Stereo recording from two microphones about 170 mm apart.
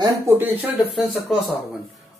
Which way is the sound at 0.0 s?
10° right (ahead or behind).